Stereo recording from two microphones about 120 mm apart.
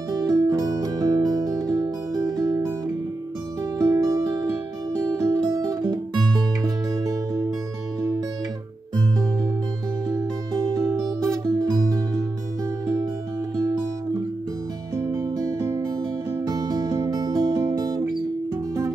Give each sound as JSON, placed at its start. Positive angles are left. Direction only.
{"t": 0.2, "sound": "music", "side_deg": -30}
{"t": 3.7, "sound": "music", "side_deg": -30}
{"t": 10.0, "sound": "music", "side_deg": -30}
{"t": 15.0, "sound": "music", "side_deg": -30}